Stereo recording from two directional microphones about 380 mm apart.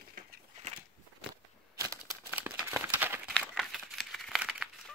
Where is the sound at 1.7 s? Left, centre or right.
Centre.